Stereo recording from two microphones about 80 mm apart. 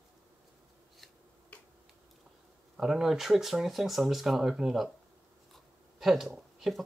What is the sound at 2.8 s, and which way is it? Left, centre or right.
Speech, centre.